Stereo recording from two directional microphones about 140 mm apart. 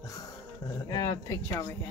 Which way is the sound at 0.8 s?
30° left (ahead or behind).